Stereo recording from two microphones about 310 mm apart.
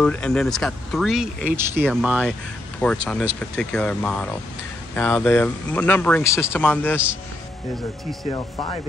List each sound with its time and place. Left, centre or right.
0.0 s speech: centre
8.3 s speech: centre